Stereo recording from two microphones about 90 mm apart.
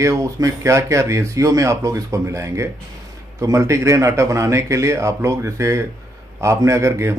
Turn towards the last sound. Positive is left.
turn(degrees=-30)  # may be behind; listen again after turning